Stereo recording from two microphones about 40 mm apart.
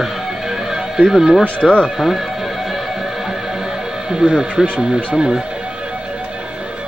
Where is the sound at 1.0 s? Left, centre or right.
Centre.